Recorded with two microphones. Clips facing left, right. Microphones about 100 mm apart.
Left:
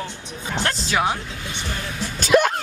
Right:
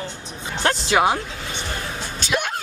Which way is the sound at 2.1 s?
45° left (ahead or behind).